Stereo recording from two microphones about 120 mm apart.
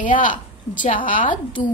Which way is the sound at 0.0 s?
90° left.